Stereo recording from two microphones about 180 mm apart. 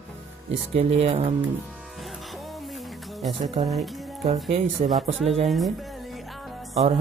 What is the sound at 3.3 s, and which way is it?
Speech, 30° right (ahead or behind).